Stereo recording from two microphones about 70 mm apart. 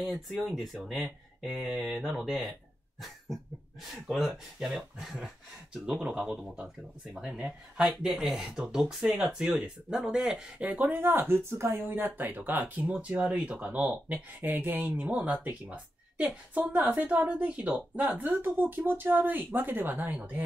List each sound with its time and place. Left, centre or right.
0.0 s speech: centre
7.2 s speech: right
7.8 s speech: centre
10.6 s speech: right
11.9 s speech: right